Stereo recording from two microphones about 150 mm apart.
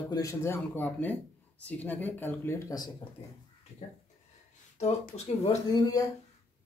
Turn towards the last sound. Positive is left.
turn(degrees=25)  # may be behind; listen again after turning